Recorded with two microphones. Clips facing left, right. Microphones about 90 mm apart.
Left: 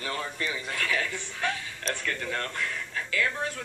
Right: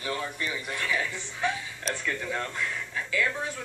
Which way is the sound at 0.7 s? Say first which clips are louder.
Even; 20° right (ahead or behind).